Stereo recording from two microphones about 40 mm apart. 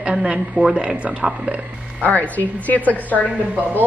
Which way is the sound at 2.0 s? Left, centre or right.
Left.